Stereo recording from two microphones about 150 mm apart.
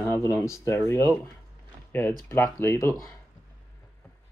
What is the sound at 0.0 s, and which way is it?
Speech, 20° left (ahead or behind).